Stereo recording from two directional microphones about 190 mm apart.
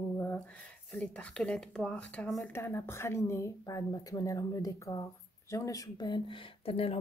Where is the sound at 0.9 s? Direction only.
5° left (ahead or behind).